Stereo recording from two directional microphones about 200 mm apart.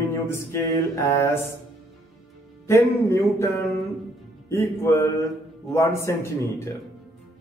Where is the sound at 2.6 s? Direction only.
15° left (ahead or behind).